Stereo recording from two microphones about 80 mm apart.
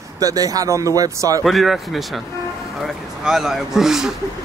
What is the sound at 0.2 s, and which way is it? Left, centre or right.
Speech, right.